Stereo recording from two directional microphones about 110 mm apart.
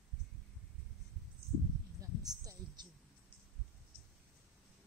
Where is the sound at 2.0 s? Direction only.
30° right (ahead or behind).